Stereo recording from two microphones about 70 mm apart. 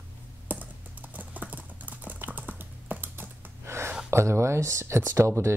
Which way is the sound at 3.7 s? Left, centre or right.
Right.